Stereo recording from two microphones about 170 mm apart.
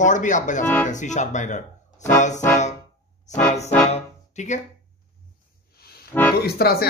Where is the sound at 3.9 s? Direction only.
45° left (ahead or behind).